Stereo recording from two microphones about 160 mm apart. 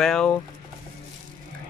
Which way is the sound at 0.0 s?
5° left (ahead or behind).